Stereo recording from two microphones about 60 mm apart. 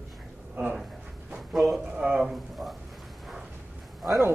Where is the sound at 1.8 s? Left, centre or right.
Right.